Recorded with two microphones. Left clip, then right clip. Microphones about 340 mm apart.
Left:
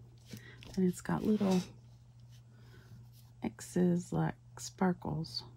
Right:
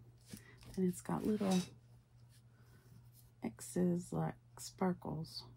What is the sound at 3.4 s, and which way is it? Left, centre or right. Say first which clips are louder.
Speech: left 5 dB; left.